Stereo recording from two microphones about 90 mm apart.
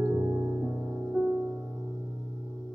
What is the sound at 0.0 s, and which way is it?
Music, 30° right (ahead or behind).